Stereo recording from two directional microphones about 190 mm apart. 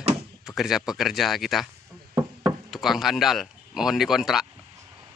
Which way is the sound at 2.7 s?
Centre (ahead or behind).